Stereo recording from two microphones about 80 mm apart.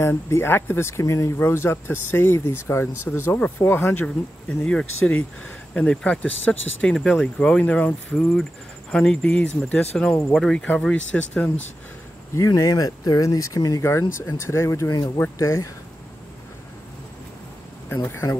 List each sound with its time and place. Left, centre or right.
0.0 s speech: left; by 11.5 s centre
12.4 s speech: left
14.1 s speech: left
17.8 s speech: left